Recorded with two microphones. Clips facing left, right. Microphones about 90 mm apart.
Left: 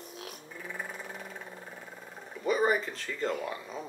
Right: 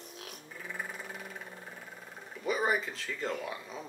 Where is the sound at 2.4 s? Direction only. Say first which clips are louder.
Left 3 dB; centre (ahead or behind).